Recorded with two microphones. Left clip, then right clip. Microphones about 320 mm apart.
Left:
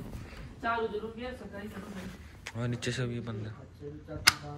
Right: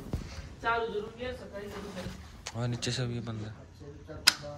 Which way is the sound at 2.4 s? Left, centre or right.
Centre.